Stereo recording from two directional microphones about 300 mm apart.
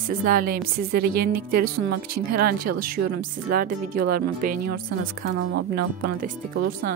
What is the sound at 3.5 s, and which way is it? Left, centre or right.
Speech, right.